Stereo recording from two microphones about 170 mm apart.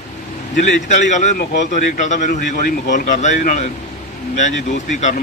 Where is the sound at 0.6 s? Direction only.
45° left (ahead or behind).